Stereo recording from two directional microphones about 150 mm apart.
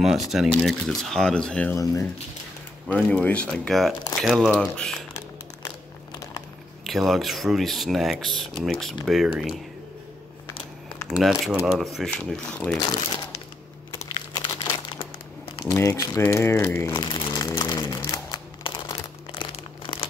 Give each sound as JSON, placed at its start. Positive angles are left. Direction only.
{"t": 0.3, "sound": "speech", "side_deg": 0}
{"t": 2.9, "sound": "speech", "side_deg": 10}
{"t": 6.9, "sound": "speech", "side_deg": 0}
{"t": 11.1, "sound": "speech", "side_deg": 0}
{"t": 12.8, "sound": "speech", "side_deg": 35}
{"t": 14.3, "sound": "crumpling", "side_deg": 35}
{"t": 15.8, "sound": "speech", "side_deg": 20}
{"t": 16.9, "sound": "a sound", "side_deg": 30}